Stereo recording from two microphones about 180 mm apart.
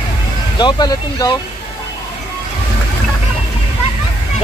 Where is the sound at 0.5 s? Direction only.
25° left (ahead or behind).